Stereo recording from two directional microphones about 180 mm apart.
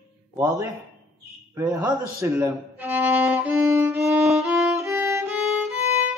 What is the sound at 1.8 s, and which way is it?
Violin, 20° right (ahead or behind).